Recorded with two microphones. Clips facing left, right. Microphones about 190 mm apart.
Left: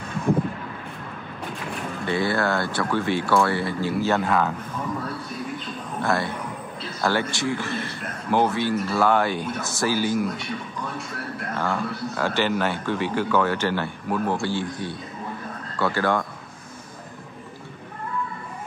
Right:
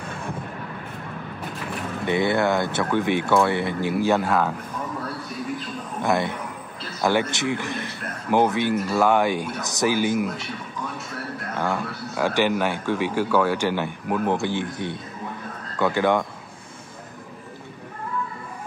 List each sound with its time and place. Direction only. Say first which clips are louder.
2.0 s speech: right 2 dB; 20° right (ahead or behind)
6.0 s a man's voice: right 2 dB; 20° right (ahead or behind)
10.1 s speech: even; 5° right (ahead or behind)
11.7 s a man's voice: left 1 dB; 10° right (ahead or behind)